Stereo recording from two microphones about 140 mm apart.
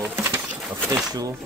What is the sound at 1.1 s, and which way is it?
Speech, 25° right (ahead or behind).